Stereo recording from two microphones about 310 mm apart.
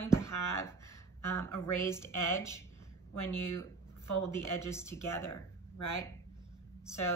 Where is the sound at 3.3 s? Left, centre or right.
Centre.